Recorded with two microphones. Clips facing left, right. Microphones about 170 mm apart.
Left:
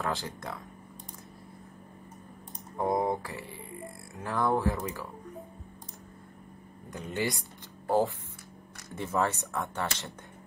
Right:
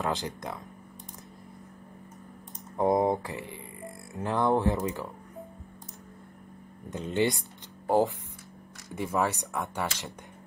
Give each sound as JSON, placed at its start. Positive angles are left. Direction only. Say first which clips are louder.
{"t": 0.0, "sound": "speech", "louder": "right 2 dB", "side_deg": -20}
{"t": 2.8, "sound": "speech", "louder": "right 4 dB", "side_deg": -20}
{"t": 6.9, "sound": "speech", "louder": "right 5 dB", "side_deg": -20}
{"t": 7.8, "sound": "a sound", "louder": "right 2 dB", "side_deg": -15}
{"t": 8.9, "sound": "speech", "louder": "right 1 dB", "side_deg": -15}